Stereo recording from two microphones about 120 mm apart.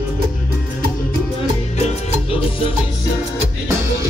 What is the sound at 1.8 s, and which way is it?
Salsa music, 50° left (ahead or behind).